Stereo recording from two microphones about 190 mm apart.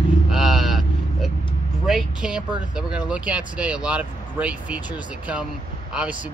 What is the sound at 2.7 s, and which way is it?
Speech, 5° right (ahead or behind).